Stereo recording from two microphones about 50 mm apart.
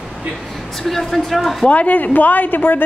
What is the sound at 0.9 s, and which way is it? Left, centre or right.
Speech, centre.